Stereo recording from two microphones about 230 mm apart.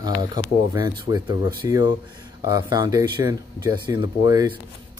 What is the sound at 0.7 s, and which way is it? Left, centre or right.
Speech, centre.